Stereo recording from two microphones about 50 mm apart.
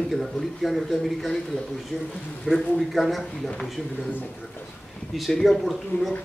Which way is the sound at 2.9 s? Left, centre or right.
Centre.